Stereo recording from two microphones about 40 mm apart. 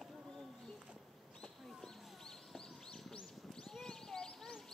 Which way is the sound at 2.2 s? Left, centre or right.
Centre.